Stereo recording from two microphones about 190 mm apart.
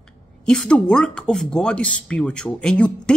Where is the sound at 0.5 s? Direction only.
5° left (ahead or behind).